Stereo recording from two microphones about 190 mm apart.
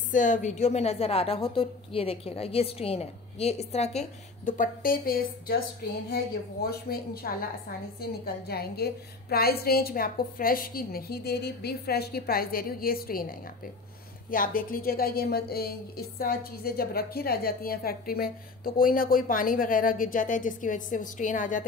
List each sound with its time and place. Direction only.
0.1 s a woman's voice: 40° left (ahead or behind)